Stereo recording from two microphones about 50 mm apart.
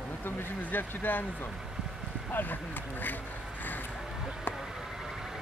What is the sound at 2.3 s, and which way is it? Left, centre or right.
Speech, left.